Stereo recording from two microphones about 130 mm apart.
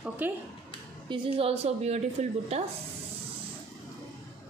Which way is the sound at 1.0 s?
40° right (ahead or behind).